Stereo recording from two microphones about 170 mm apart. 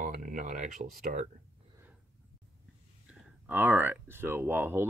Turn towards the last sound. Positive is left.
turn(degrees=-10)  # may be behind; listen again after turning